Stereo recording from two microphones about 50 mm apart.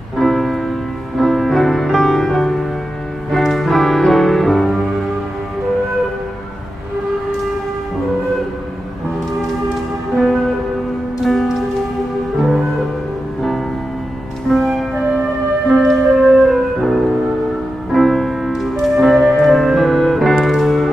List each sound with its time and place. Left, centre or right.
0.2 s music: centre
10.1 s music: centre
14.5 s music: centre
15.0 s music: centre
15.7 s music: centre